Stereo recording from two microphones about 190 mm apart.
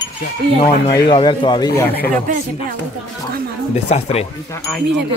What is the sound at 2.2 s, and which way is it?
Speech, 45° right (ahead or behind).